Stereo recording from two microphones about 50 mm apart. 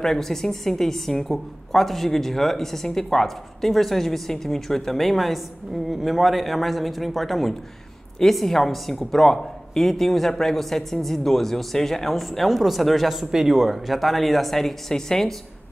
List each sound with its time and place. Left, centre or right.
0.0 s speech: centre